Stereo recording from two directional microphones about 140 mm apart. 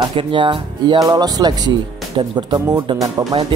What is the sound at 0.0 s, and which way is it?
Speech, 40° right (ahead or behind).